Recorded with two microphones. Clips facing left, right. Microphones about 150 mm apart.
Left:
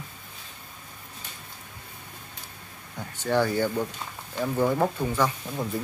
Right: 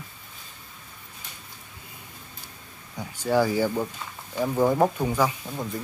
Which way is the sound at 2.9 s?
10° right (ahead or behind).